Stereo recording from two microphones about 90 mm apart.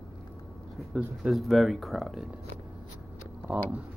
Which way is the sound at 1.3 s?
Centre (ahead or behind).